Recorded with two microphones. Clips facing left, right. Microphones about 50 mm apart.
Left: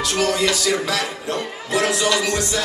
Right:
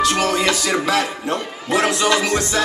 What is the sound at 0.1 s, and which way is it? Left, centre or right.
Music, right.